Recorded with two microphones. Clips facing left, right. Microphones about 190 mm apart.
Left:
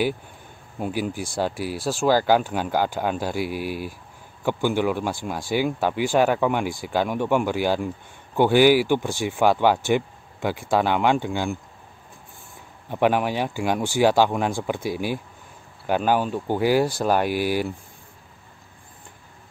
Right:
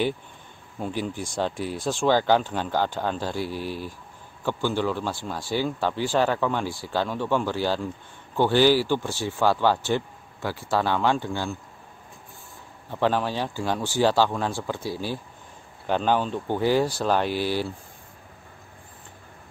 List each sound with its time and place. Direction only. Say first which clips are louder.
0.7 s speech: left 3 dB; 10° left (ahead or behind)
12.9 s speech: left 3 dB; 15° left (ahead or behind)